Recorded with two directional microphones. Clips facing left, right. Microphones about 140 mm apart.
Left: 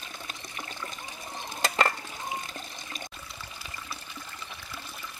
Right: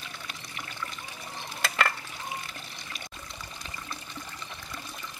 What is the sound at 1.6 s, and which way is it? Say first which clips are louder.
Stir: left 2 dB; 35° left (ahead or behind).